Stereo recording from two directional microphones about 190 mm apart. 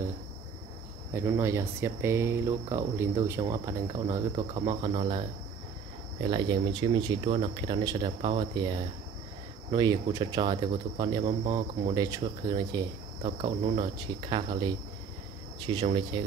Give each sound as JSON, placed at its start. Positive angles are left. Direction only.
{"t": 1.1, "sound": "speech", "side_deg": -15}
{"t": 6.2, "sound": "speech", "side_deg": -20}
{"t": 15.8, "sound": "speech", "side_deg": -30}